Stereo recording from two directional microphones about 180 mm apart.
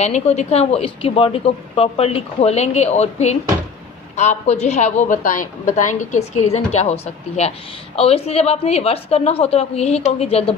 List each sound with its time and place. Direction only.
0.0 s a woman's voice: 40° left (ahead or behind)